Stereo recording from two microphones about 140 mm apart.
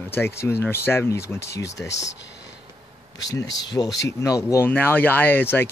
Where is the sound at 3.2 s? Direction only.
25° left (ahead or behind).